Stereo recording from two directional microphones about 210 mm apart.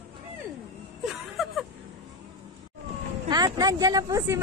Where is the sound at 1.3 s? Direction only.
Centre (ahead or behind).